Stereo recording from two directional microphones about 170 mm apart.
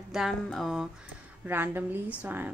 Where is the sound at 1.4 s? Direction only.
10° right (ahead or behind).